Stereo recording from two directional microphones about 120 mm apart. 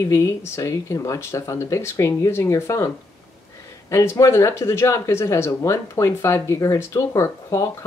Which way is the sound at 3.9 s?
25° left (ahead or behind).